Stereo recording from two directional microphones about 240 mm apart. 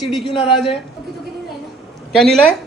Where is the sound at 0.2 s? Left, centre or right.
Left.